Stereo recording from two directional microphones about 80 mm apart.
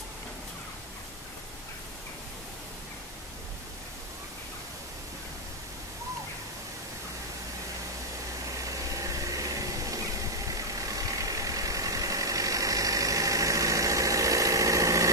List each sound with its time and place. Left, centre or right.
8.6 s vehicle: right